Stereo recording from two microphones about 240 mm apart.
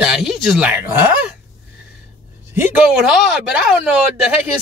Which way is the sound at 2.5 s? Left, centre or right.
Centre.